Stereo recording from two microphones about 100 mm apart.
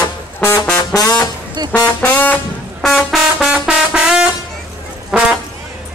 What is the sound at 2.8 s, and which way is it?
Trumpet, centre (ahead or behind).